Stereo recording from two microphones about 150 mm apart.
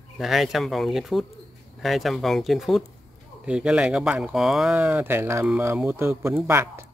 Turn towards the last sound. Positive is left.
turn(degrees=-15)  # may be behind; listen again after turning